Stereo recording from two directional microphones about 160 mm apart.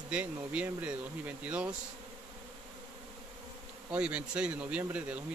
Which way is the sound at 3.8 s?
5° right (ahead or behind).